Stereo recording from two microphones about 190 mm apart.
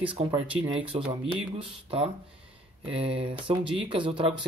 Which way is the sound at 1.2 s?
30° right (ahead or behind).